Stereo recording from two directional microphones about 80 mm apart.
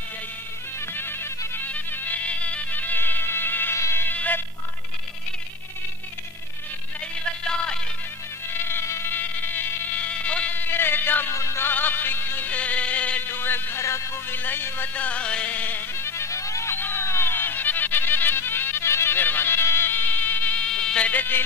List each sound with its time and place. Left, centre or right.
0.7 s music: left
1.7 s music: centre
8.6 s mosquito: left
11.3 s music: left
11.7 s a sound: left
21.1 s a sound: left